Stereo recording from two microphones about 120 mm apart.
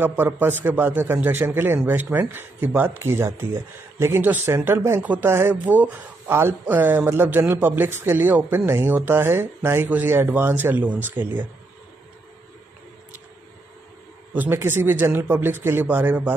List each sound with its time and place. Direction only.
0.0 s speech: 15° right (ahead or behind)
14.3 s speech: 15° right (ahead or behind)